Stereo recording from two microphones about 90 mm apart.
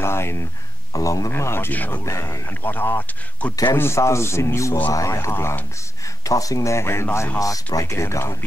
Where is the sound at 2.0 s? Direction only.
35° left (ahead or behind).